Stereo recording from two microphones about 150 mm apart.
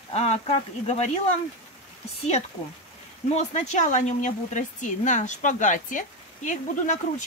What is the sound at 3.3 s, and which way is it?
Speech, 50° left (ahead or behind).